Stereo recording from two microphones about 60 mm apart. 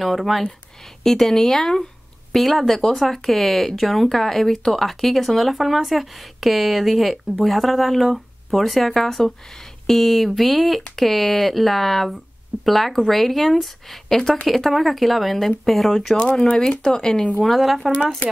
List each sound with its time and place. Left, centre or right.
0.0 s speech: centre
16.2 s speech: centre
17.9 s speech: left